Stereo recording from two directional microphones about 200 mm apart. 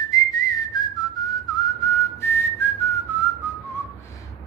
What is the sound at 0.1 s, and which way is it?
Whistling, 20° left (ahead or behind).